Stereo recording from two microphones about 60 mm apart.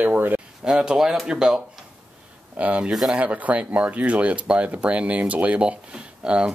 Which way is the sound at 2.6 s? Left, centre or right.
Right.